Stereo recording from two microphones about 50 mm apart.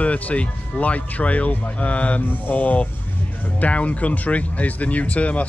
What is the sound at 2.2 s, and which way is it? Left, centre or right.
Speech, left.